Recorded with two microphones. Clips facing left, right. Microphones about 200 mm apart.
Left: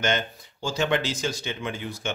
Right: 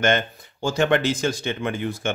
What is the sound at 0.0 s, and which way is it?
Speech, 55° right (ahead or behind).